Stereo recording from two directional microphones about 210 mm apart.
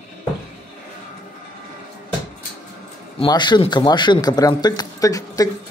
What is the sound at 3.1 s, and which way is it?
A man's voice, 20° left (ahead or behind).